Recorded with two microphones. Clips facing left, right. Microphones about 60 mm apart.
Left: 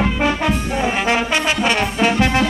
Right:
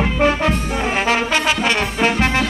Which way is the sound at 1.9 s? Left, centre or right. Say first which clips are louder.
Left 1 dB; right.